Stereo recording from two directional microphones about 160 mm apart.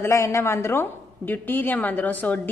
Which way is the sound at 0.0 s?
20° left (ahead or behind).